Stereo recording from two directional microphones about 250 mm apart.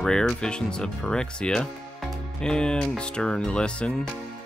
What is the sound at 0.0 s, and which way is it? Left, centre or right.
Speech, centre.